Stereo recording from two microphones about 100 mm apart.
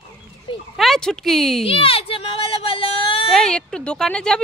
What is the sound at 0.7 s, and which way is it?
Speech, 5° left (ahead or behind).